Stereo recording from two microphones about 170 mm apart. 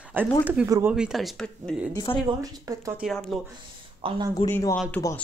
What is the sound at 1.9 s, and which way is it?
Speech, 30° left (ahead or behind).